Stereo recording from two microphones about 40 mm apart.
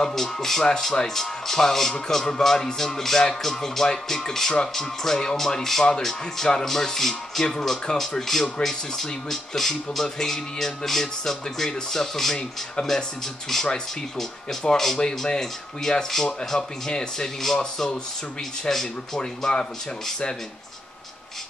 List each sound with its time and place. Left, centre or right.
0.0 s speech: centre
14.6 s speech: centre